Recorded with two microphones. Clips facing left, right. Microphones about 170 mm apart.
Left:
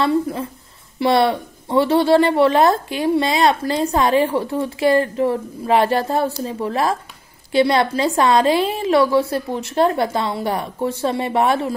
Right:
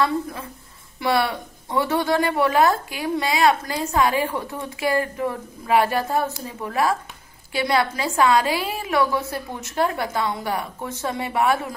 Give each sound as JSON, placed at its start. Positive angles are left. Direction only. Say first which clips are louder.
{"t": 0.0, "sound": "a woman's voice", "louder": "left 5 dB", "side_deg": 30}